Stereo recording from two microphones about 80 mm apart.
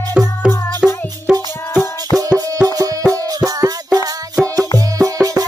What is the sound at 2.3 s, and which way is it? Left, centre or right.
Music, right.